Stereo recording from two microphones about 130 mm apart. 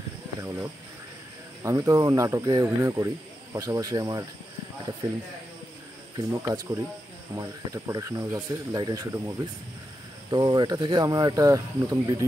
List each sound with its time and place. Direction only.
0.4 s speech: 25° right (ahead or behind)
6.1 s speech: 25° right (ahead or behind)